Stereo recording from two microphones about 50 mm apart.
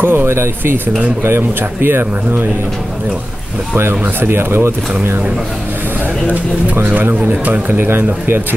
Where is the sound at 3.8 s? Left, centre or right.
Right.